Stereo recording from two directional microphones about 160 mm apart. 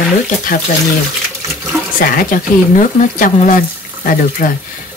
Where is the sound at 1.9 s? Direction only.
60° left (ahead or behind).